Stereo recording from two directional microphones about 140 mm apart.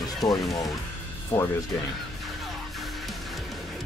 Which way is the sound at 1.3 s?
15° left (ahead or behind).